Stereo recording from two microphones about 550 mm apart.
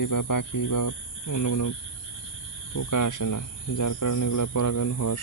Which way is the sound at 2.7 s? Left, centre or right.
Left.